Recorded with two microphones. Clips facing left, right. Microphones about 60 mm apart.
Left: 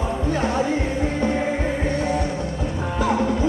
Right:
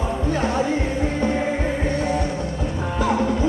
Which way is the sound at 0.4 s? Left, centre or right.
Centre.